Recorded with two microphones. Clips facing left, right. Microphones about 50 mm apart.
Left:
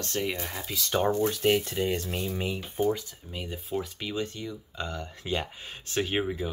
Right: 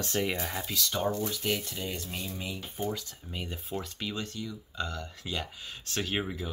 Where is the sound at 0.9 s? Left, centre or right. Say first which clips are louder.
Left 7 dB; left.